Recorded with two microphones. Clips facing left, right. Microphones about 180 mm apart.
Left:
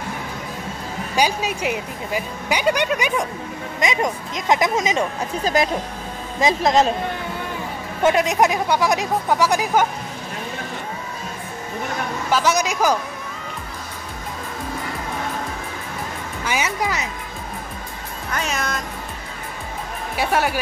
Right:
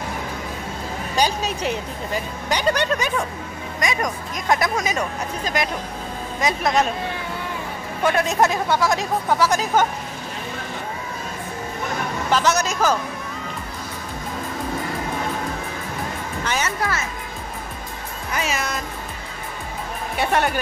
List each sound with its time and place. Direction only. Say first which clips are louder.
1.1 s speech: left 1 dB; 10° left (ahead or behind)
5.4 s speech: left 6 dB; 35° left (ahead or behind)
8.0 s speech: left 2 dB; 20° left (ahead or behind)
12.3 s speech: left 1 dB; 10° left (ahead or behind)
16.4 s speech: left 2 dB; 10° left (ahead or behind)
18.3 s speech: even; 5° right (ahead or behind)
20.2 s speech: even; 5° left (ahead or behind)